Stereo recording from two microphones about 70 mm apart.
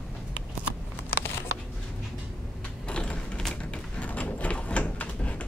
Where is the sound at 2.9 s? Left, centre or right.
Centre.